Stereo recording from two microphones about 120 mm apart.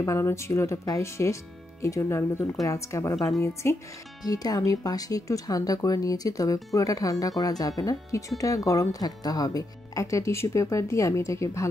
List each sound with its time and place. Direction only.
0.0 s speech: 25° left (ahead or behind)
3.2 s a woman's voice: centre (ahead or behind)
3.6 s speech: 20° left (ahead or behind)
4.2 s speech: 30° left (ahead or behind)